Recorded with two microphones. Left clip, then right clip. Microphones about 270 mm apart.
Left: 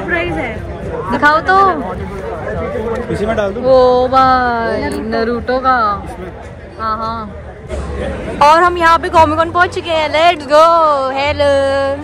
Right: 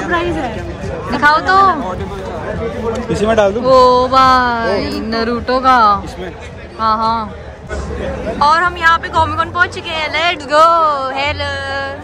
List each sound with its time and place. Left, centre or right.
1.1 s speech: centre
2.9 s speech: right
3.6 s speech: centre
8.4 s speech: centre